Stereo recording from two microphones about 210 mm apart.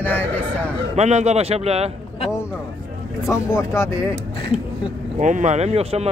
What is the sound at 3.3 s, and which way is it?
Speech, 15° left (ahead or behind).